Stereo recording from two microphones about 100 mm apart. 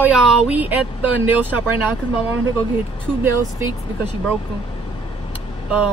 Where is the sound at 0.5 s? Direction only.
15° right (ahead or behind).